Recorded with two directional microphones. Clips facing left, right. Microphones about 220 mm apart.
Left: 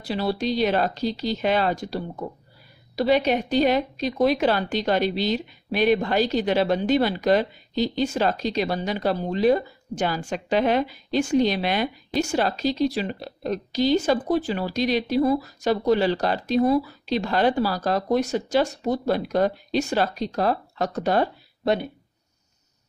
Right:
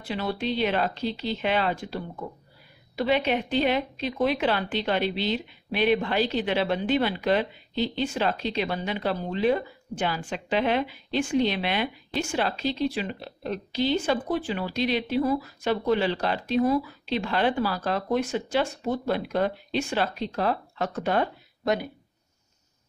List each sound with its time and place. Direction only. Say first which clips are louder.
0.0 s a woman's voice: left 4 dB; 35° left (ahead or behind)